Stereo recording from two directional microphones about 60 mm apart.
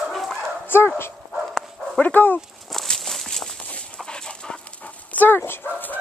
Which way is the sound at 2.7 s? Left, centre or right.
Centre.